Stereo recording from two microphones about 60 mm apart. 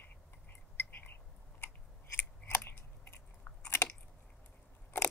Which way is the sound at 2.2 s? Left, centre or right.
Left.